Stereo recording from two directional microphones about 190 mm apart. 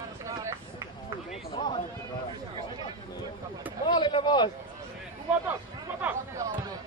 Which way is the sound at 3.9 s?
25° left (ahead or behind).